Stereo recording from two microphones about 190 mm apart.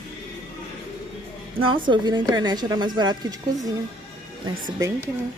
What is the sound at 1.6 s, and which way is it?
A woman's voice, 25° right (ahead or behind).